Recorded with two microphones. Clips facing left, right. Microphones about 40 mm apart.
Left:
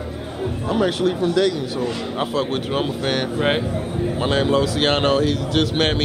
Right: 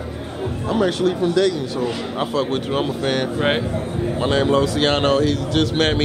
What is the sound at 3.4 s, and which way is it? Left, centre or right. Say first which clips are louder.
Speech: even; centre.